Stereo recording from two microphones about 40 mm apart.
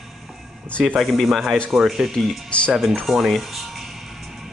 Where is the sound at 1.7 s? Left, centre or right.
Centre.